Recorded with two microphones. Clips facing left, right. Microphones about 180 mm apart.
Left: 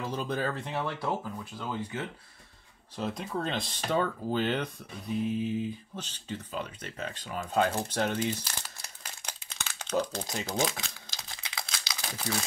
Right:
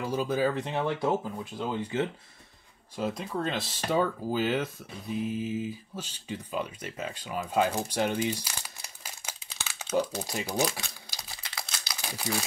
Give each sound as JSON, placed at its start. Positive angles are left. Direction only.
{"t": 0.0, "sound": "speech", "side_deg": -5}
{"t": 0.6, "sound": "speech", "side_deg": -20}
{"t": 3.0, "sound": "speech", "side_deg": 0}
{"t": 9.5, "sound": "crumpling", "side_deg": -5}